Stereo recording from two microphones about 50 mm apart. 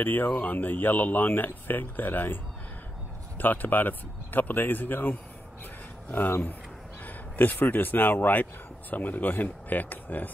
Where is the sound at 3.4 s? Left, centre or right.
Left.